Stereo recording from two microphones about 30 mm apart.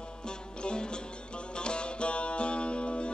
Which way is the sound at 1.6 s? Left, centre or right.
Left.